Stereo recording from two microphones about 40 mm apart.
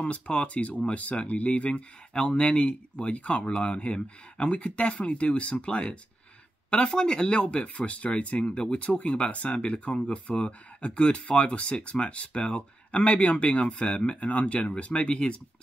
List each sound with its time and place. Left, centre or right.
0.0 s speech: left